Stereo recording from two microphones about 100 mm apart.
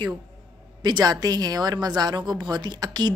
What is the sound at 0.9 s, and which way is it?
A woman's voice, 40° right (ahead or behind).